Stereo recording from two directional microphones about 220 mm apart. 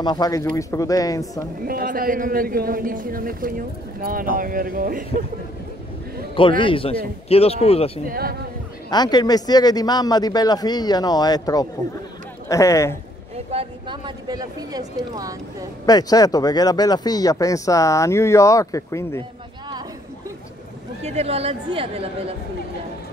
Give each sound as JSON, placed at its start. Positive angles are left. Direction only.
{"t": 0.0, "sound": "speech", "side_deg": 20}
{"t": 1.7, "sound": "a man's voice", "side_deg": -40}
{"t": 6.6, "sound": "a man's voice", "side_deg": 25}
{"t": 8.1, "sound": "speech", "side_deg": -45}
{"t": 8.9, "sound": "speech", "side_deg": 20}
{"t": 13.5, "sound": "speech", "side_deg": -25}
{"t": 15.8, "sound": "speech", "side_deg": 15}
{"t": 21.0, "sound": "a woman's voice", "side_deg": -30}